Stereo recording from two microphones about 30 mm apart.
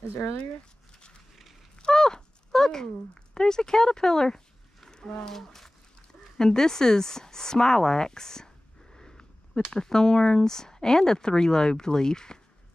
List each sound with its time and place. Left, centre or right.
2.0 s a sound: left
3.3 s speech: left
4.8 s a sound: left
5.3 s speech: centre
8.9 s sniff: left
9.7 s speech: left